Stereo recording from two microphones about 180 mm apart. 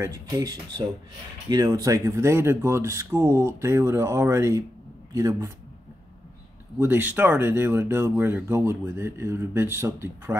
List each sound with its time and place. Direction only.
0.0 s speech: 20° right (ahead or behind)
6.8 s speech: 10° right (ahead or behind)